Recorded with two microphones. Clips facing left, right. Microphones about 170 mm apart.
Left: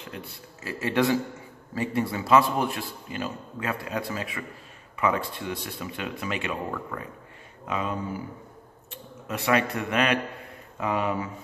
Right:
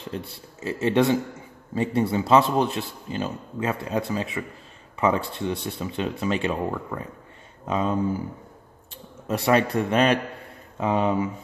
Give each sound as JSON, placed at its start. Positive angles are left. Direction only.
{"t": 0.1, "sound": "speech", "side_deg": -30}
{"t": 9.3, "sound": "speech", "side_deg": -30}